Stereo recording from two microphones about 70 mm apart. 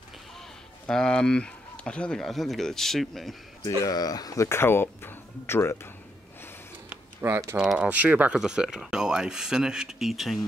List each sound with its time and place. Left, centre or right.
0.8 s speech: centre
2.2 s speech: centre
3.6 s speech: left
4.5 s speech: left
7.2 s speech: right
7.5 s speech: centre
7.9 s speech: right
8.4 s speech: centre